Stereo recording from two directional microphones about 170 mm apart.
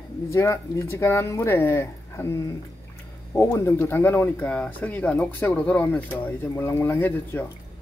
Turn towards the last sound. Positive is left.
turn(degrees=10)  # may be behind; listen again after turning